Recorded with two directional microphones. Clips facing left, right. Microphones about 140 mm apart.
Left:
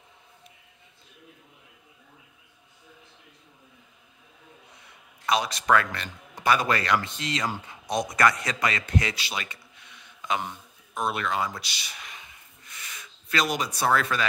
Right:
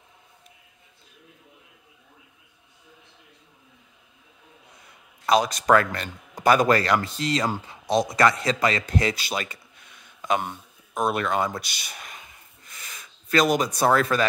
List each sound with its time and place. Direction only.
5.2 s speech: 40° right (ahead or behind)
8.1 s a man's voice: 25° right (ahead or behind)